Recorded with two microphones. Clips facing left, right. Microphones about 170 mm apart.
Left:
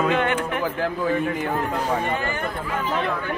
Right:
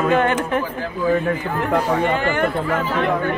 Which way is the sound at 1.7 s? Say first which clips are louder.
Right 5 dB; 85° right.